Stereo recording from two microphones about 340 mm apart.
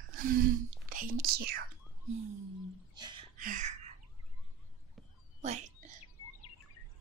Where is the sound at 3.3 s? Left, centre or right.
Right.